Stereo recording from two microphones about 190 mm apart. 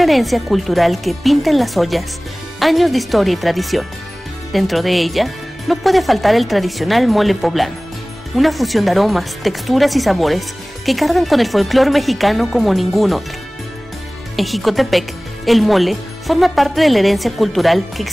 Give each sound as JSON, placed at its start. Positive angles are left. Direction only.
{"t": 0.0, "sound": "a woman's voice", "side_deg": 0}
{"t": 14.3, "sound": "a woman's voice", "side_deg": 0}